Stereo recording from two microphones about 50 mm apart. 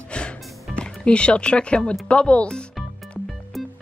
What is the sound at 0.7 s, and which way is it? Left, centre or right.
Speech, centre.